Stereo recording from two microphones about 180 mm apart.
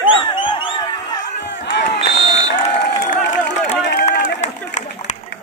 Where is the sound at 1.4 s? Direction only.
75° left (ahead or behind).